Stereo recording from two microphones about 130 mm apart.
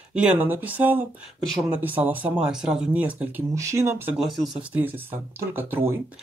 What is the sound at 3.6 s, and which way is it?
Speech, 25° right (ahead or behind).